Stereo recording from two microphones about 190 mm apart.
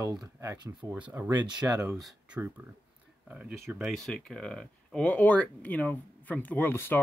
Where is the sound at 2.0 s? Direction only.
5° right (ahead or behind).